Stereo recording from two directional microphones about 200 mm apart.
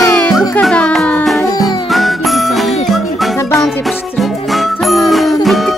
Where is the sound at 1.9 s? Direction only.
Centre (ahead or behind).